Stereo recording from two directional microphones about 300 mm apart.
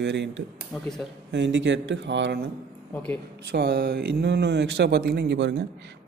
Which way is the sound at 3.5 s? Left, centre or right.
Right.